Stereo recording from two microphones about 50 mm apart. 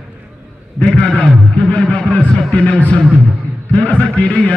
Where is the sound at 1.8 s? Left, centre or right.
Left.